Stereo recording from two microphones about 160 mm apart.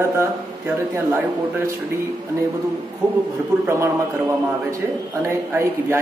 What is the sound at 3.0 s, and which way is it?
Speech, 20° right (ahead or behind).